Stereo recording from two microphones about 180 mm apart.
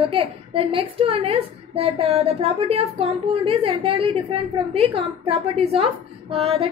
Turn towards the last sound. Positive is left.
turn(degrees=-35)  # may be behind; listen again after turning